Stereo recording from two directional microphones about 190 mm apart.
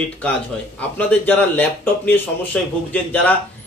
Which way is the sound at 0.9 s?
10° left (ahead or behind).